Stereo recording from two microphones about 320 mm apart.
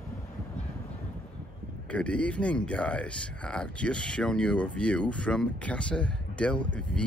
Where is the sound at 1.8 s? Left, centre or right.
Centre.